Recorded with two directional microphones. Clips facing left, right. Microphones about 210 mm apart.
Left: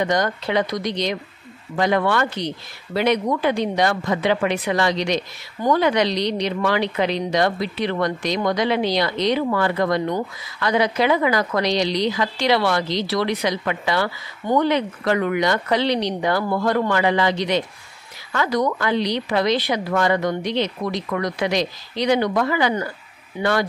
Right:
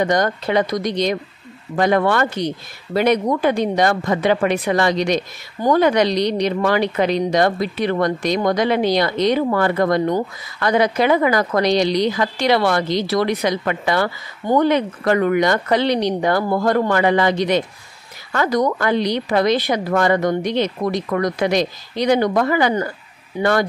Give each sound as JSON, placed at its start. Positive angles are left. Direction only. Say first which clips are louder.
{"t": 0.0, "sound": "speech", "louder": "right 3 dB", "side_deg": -45}